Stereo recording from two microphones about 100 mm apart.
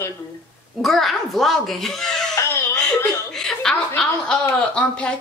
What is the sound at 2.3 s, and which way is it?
Baby laughter, 35° left (ahead or behind).